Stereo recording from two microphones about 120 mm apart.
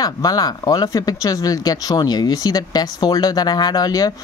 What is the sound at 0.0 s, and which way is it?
Speech, 30° left (ahead or behind).